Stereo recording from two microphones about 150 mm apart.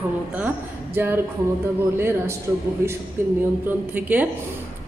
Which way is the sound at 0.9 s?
15° right (ahead or behind).